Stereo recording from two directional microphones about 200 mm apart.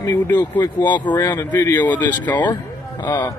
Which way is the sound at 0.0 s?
15° left (ahead or behind).